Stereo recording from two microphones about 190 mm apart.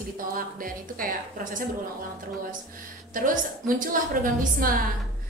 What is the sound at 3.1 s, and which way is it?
A woman's voice, 45° right (ahead or behind).